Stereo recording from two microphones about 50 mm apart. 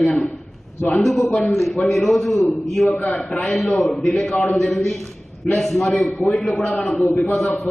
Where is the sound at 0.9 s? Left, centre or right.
Centre.